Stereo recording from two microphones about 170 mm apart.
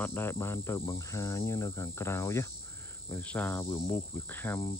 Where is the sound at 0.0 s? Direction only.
15° left (ahead or behind).